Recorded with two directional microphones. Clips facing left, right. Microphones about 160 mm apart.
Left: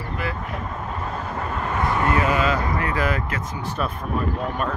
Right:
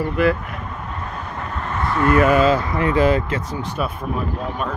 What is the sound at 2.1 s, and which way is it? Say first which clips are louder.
Speech: right 10 dB; 55° right (ahead or behind).